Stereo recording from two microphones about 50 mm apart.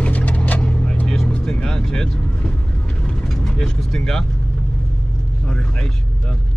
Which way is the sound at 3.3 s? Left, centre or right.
Centre.